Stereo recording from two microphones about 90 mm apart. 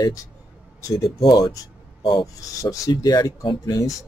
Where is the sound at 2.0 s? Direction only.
60° left (ahead or behind).